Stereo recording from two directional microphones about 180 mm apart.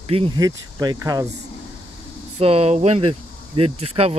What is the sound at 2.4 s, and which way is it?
Speech, 35° right (ahead or behind).